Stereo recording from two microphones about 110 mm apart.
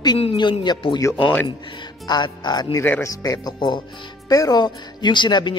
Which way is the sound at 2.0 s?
40° left (ahead or behind).